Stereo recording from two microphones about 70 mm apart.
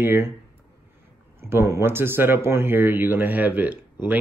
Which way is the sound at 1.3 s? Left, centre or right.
Right.